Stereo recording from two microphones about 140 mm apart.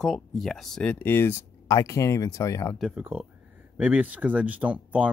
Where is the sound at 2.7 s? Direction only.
5° right (ahead or behind).